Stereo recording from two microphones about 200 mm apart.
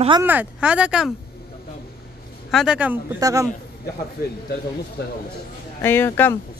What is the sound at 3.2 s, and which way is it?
Speech, 15° right (ahead or behind).